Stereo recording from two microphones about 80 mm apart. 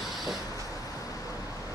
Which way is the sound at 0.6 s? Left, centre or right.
Left.